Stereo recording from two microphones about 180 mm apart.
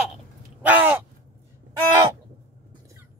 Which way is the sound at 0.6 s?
10° right (ahead or behind).